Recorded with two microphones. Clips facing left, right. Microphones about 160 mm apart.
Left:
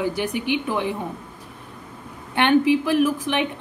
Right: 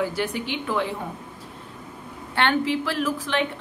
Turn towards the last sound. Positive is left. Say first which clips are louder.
# left 5 dB
turn(degrees=15)  # may be behind; listen again after turning